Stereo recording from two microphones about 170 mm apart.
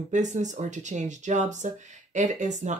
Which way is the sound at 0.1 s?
45° right (ahead or behind).